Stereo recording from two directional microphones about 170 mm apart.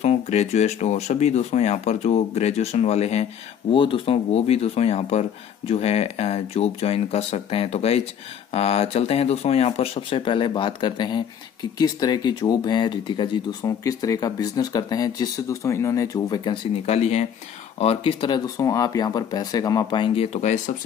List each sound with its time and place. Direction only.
0.0 s speech: 40° left (ahead or behind); by 16.5 s 20° left (ahead or behind)
16.8 s speech: 40° left (ahead or behind)